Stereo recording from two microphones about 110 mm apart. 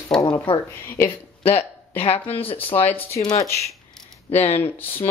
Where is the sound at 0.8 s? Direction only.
20° left (ahead or behind).